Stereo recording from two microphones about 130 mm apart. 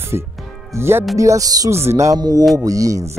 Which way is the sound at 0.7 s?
20° right (ahead or behind).